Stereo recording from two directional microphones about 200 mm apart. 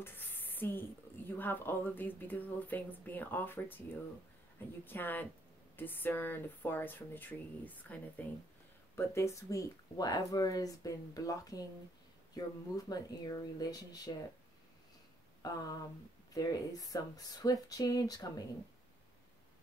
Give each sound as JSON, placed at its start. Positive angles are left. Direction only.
{"t": 0.0, "sound": "speech", "side_deg": 10}
{"t": 4.8, "sound": "speech", "side_deg": 10}
{"t": 15.4, "sound": "speech", "side_deg": 20}